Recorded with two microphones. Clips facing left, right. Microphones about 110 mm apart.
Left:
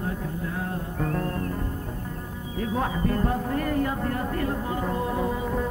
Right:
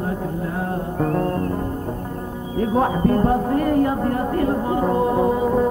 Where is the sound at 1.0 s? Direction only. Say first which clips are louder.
Right 7 dB; 35° right (ahead or behind).